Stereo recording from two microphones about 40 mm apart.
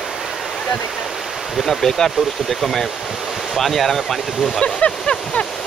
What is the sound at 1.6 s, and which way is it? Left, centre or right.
Speech, centre.